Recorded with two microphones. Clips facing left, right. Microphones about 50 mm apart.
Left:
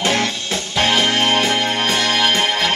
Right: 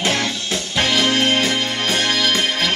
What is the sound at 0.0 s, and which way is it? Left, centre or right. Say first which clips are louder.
Music: left 2 dB; left.